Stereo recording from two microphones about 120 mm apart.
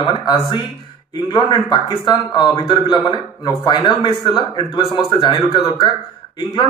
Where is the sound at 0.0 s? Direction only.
40° left (ahead or behind).